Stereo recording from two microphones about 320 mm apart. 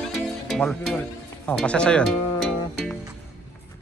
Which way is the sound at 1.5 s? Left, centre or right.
Centre.